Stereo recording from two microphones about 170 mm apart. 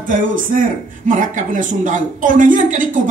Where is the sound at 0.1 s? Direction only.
55° right (ahead or behind).